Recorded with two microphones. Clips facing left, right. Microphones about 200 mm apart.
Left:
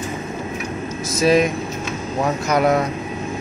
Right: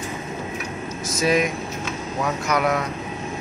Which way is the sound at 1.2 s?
30° left (ahead or behind).